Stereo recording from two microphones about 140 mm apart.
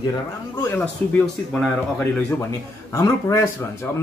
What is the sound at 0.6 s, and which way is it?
Speech, 15° left (ahead or behind).